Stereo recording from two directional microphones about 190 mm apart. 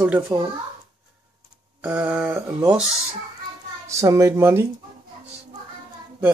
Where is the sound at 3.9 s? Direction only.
15° right (ahead or behind).